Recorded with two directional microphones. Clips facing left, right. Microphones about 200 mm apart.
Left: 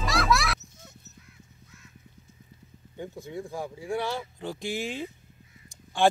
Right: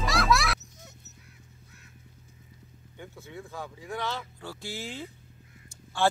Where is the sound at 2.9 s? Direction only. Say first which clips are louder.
Left 7 dB; 15° left (ahead or behind).